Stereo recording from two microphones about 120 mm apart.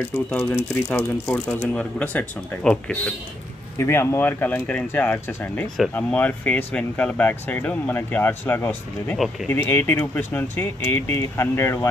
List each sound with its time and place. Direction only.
0.3 s speech: 10° left (ahead or behind)
3.7 s speech: 20° left (ahead or behind)